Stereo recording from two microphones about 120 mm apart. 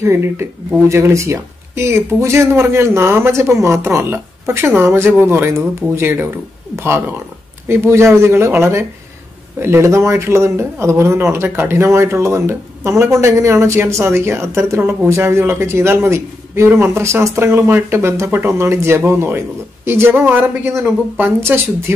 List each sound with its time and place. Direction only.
0.0 s a man's voice: 20° right (ahead or behind)